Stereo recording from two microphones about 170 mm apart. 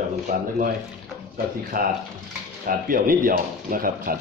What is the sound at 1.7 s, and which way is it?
Speech, 60° right (ahead or behind).